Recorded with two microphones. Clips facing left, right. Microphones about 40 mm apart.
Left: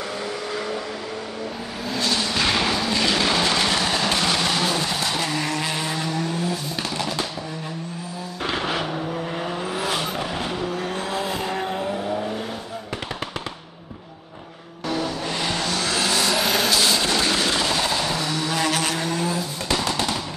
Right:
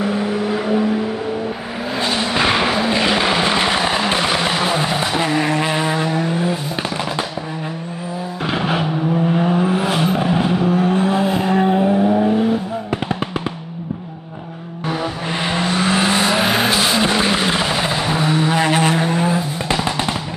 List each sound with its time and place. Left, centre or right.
0.0 s vehicle: right
8.5 s vehicle: centre
14.9 s vehicle: right